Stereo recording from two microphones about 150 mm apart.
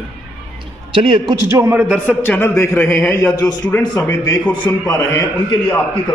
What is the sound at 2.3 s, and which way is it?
A man's voice, 15° left (ahead or behind).